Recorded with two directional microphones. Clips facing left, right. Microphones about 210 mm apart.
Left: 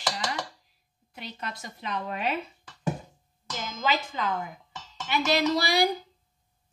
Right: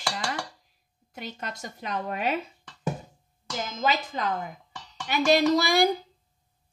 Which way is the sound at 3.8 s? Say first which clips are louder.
Right 1 dB; 40° right (ahead or behind).